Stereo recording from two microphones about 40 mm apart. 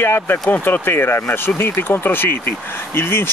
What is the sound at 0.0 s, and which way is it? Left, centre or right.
Speech, left.